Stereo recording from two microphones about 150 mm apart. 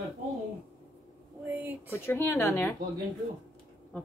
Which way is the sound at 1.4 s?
10° right (ahead or behind).